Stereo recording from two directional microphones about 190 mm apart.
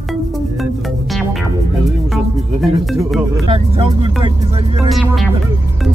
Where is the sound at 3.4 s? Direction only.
30° right (ahead or behind).